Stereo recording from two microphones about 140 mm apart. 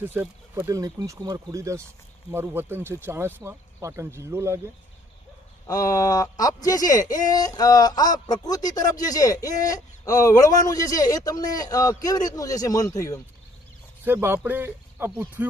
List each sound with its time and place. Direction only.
0.0 s speech: 15° right (ahead or behind)
5.7 s speech: 25° left (ahead or behind)
14.0 s speech: 15° right (ahead or behind)